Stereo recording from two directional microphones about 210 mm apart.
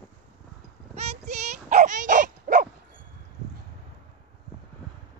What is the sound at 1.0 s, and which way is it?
Dog, 30° right (ahead or behind).